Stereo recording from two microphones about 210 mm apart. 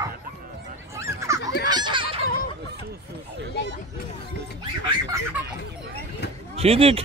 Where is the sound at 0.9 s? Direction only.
15° right (ahead or behind).